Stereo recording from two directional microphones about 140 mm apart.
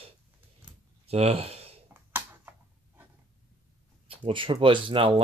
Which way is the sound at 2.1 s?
15° right (ahead or behind).